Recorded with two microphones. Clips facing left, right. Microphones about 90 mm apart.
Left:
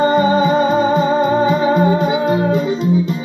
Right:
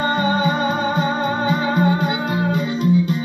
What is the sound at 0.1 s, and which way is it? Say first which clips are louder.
Music: left 6 dB; 30° left (ahead or behind).